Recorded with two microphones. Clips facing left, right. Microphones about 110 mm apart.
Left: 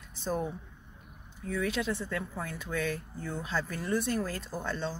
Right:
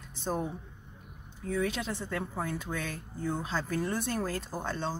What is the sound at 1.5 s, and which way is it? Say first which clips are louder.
Speech: even; 35° right (ahead or behind).